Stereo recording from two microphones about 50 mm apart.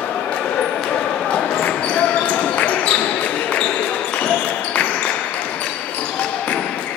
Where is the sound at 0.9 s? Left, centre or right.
Left.